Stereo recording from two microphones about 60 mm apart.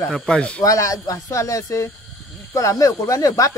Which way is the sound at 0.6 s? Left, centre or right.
Left.